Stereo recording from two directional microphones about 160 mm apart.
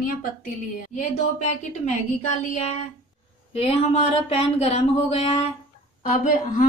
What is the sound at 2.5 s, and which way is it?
Speech, 40° left (ahead or behind).